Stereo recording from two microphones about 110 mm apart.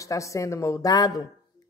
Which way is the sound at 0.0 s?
30° left (ahead or behind).